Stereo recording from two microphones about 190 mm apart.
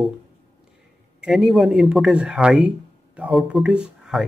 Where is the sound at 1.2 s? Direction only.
Centre (ahead or behind).